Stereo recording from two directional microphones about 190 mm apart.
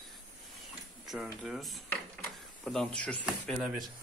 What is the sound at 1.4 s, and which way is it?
Speech, centre (ahead or behind).